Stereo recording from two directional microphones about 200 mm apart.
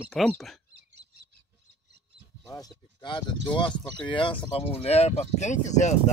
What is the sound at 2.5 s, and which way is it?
Speech, 20° left (ahead or behind).